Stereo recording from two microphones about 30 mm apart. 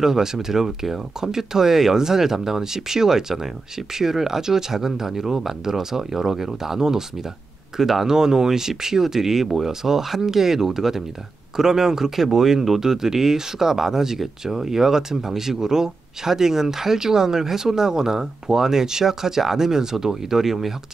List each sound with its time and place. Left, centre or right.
0.0 s speech: centre